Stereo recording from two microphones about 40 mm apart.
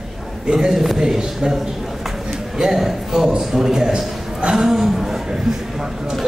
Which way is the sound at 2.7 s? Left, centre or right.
Centre.